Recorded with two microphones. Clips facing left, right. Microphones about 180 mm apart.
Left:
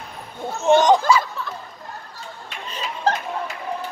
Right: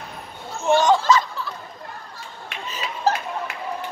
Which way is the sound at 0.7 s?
20° left (ahead or behind).